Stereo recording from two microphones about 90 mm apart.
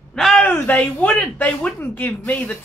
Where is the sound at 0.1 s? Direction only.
5° left (ahead or behind).